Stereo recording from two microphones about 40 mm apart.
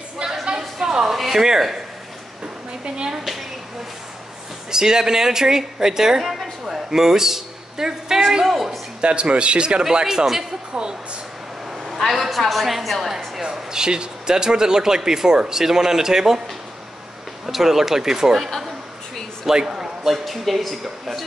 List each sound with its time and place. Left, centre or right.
0.6 s a sound: centre
1.1 s speech: centre
2.8 s speech: right
4.6 s speech: centre
8.5 s a sound: centre
9.0 s speech: right
12.0 s speech: centre
13.4 s speech: centre
17.5 s speech: centre
19.5 s a man's voice: centre
20.0 s speech: centre